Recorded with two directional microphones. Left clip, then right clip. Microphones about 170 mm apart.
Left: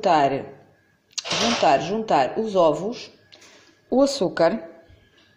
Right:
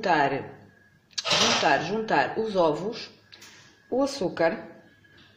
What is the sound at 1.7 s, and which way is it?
Speech, 20° left (ahead or behind).